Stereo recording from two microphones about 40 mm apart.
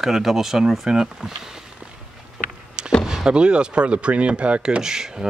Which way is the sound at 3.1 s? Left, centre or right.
Centre.